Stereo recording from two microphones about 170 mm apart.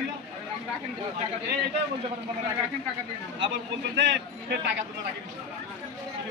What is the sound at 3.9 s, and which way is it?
Speech, 90° right.